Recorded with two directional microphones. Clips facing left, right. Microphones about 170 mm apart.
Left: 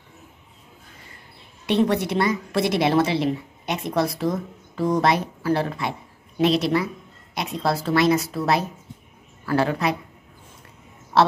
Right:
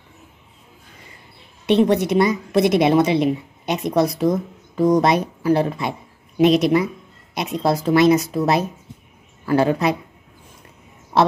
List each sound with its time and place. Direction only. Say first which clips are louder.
1.7 s a woman's voice: right 5 dB; 20° right (ahead or behind)
11.1 s a woman's voice: right 1 dB; 10° right (ahead or behind)